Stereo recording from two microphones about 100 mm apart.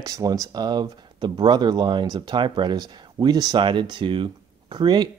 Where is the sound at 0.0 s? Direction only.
40° right (ahead or behind).